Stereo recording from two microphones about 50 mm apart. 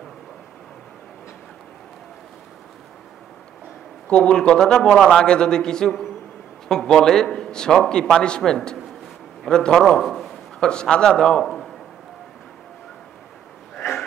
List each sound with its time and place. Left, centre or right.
4.1 s a man's voice: centre
10.6 s a man's voice: centre
11.4 s a sound: centre